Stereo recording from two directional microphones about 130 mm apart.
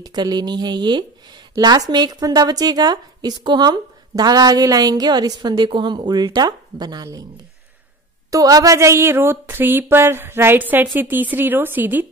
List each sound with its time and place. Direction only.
0.0 s a woman's voice: 35° right (ahead or behind)
8.3 s speech: 25° right (ahead or behind)